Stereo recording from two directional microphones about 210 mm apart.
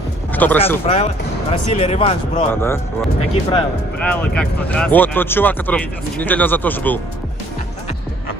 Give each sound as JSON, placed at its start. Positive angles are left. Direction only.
{"t": 0.3, "sound": "speech", "side_deg": 10}
{"t": 0.8, "sound": "speech", "side_deg": 25}
{"t": 2.5, "sound": "speech", "side_deg": 10}